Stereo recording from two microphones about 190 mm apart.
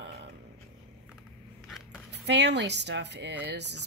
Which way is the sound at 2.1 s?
65° right (ahead or behind).